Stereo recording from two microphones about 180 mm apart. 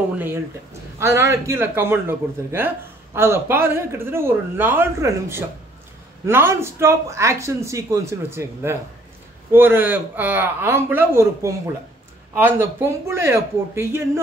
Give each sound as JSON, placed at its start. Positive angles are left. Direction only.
{"t": 0.9, "sound": "a man's voice", "side_deg": -15}